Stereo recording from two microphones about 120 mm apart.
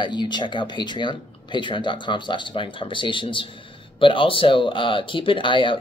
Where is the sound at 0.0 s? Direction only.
40° left (ahead or behind).